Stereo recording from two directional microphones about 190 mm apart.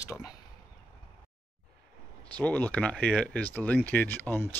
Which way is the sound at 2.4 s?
10° left (ahead or behind).